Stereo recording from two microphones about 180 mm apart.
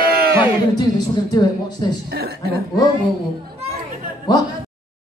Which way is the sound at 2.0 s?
60° right (ahead or behind).